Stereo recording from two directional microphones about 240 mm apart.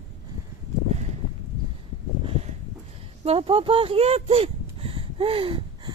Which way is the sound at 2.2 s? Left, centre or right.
Right.